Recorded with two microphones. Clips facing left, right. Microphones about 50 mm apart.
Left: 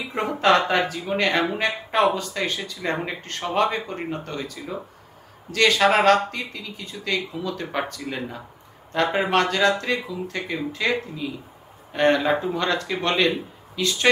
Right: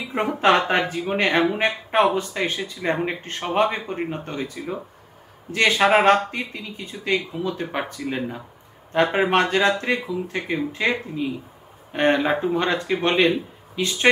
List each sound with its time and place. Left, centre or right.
0.1 s speech: centre